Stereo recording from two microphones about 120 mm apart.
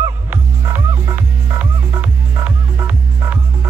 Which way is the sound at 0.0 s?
15° right (ahead or behind).